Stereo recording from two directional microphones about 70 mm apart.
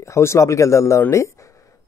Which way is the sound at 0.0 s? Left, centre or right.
Left.